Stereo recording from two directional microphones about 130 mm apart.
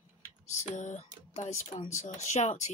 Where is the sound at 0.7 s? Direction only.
70° left (ahead or behind).